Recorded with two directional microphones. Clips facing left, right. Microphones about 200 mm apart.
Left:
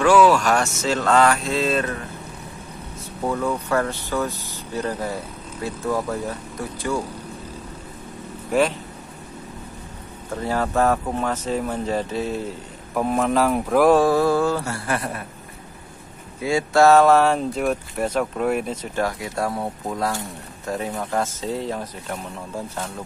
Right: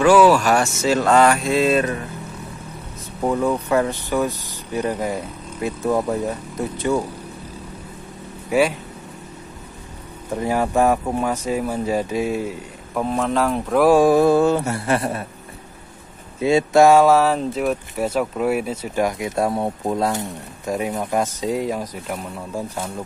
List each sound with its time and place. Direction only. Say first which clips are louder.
0.0 s speech: right 2 dB; 5° right (ahead or behind)
3.3 s speech: right 4 dB; 15° right (ahead or behind)
5.6 s mantra: right 4 dB; 20° right (ahead or behind)
8.5 s speech: right 2 dB; 10° right (ahead or behind)
10.3 s speech: right 3 dB; 15° right (ahead or behind)
12.9 s speech: left 1 dB; 5° left (ahead or behind)
13.9 s mantra: right 4 dB; 15° right (ahead or behind)
16.3 s speech: right 4 dB; 20° right (ahead or behind)